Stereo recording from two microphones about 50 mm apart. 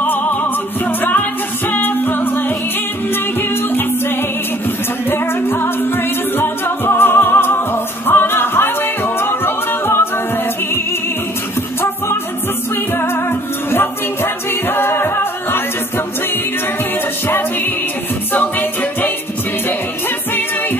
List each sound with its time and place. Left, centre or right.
0.0 s music: left
4.6 s music: left
12.9 s music: left
18.3 s music: left